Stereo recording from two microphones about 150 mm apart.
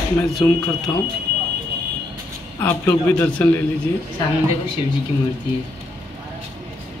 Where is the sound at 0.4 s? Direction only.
15° left (ahead or behind).